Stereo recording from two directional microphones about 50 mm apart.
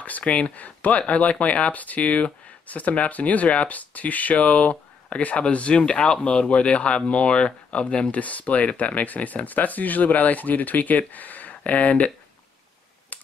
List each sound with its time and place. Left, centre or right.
0.0 s speech: left
13.1 s computer keyboard: left